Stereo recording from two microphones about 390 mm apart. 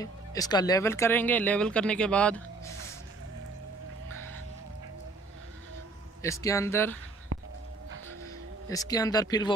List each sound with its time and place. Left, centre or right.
0.0 s speech: centre
6.2 s speech: centre
7.3 s a sound: right
8.6 s speech: centre